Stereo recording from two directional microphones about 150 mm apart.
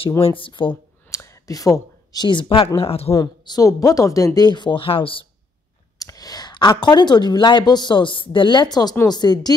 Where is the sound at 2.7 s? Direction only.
40° left (ahead or behind).